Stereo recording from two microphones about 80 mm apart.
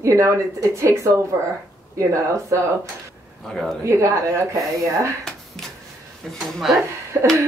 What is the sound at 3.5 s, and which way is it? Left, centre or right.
Speech, centre.